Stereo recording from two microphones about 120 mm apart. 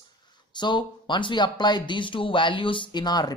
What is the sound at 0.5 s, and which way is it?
Speech, 40° left (ahead or behind).